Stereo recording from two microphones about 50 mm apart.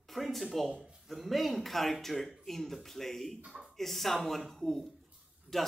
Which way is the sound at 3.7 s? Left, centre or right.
Centre.